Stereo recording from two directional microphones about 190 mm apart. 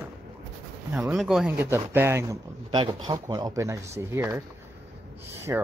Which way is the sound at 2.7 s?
25° right (ahead or behind).